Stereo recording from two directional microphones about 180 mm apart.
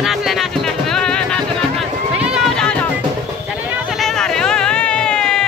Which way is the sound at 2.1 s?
5° right (ahead or behind).